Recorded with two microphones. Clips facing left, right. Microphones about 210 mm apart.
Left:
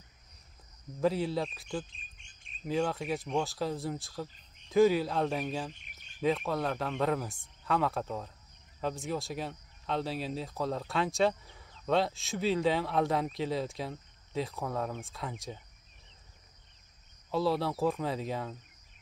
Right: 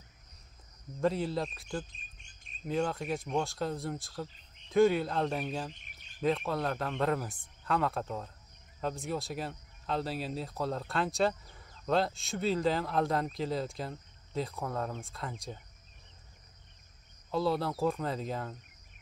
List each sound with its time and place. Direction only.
1.0 s speech: centre (ahead or behind)
1.9 s chirp: 40° right (ahead or behind)
2.6 s speech: centre (ahead or behind)
17.3 s speech: centre (ahead or behind)